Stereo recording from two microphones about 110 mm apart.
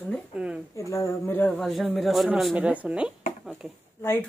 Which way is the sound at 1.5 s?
5° left (ahead or behind).